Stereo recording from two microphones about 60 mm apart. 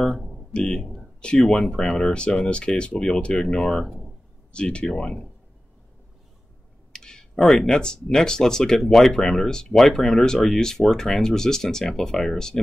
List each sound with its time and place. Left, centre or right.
0.0 s a sound: centre
0.5 s speech: centre
6.9 s speech: centre